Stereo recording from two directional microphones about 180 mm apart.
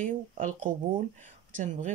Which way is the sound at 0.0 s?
45° right (ahead or behind).